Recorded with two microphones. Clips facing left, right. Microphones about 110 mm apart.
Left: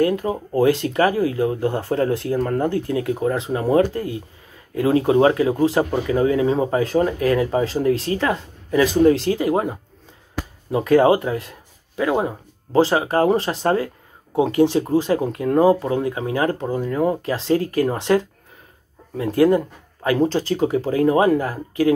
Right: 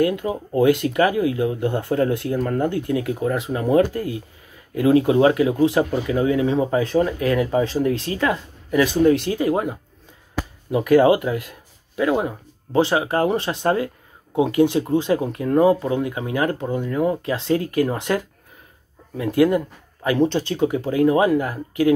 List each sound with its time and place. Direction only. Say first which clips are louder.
0.0 s speech: left 1 dB; 35° left (ahead or behind)